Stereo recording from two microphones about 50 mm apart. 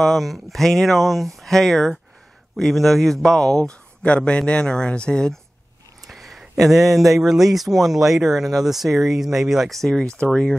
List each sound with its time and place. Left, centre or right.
0.0 s speech: centre
6.0 s a sound: centre
7.2 s speech: centre
9.7 s speech: centre